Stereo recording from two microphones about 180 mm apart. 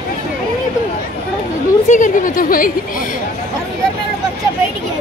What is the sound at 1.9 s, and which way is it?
Speech, 45° left (ahead or behind).